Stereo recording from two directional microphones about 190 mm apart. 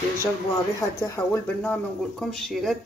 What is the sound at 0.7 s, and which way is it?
Speech, 15° left (ahead or behind).